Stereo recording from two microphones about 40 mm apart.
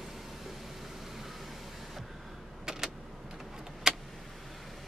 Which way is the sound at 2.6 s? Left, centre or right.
Centre.